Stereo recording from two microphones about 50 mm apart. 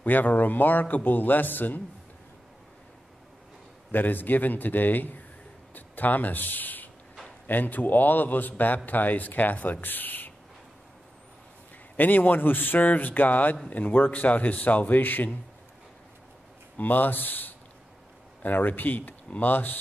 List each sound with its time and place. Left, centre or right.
0.0 s a man's voice: left
3.9 s a man's voice: left
12.0 s a man's voice: left
16.7 s a man's voice: left